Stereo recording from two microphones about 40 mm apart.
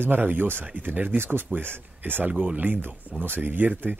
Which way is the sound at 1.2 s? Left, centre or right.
Right.